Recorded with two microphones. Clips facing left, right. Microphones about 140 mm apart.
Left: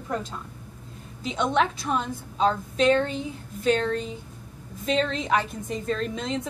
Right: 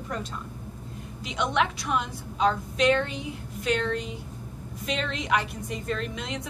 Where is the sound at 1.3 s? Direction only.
35° left (ahead or behind).